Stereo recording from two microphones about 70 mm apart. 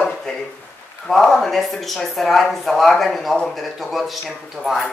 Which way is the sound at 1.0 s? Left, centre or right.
Centre.